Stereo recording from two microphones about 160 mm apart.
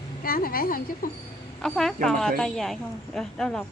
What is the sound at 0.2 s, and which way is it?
Speech, 65° left (ahead or behind).